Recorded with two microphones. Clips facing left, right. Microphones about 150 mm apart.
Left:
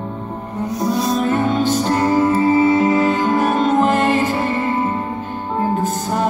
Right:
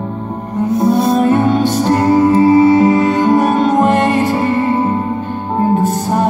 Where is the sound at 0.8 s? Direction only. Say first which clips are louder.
Right 6 dB; 55° right (ahead or behind).